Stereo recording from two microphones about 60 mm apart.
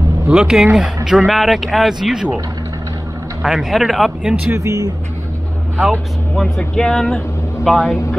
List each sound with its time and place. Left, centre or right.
0.3 s speech: centre
3.4 s speech: centre
4.5 s speech: right
5.9 s speech: centre
7.6 s speech: centre